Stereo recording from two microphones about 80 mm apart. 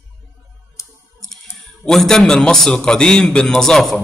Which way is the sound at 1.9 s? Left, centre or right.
Centre.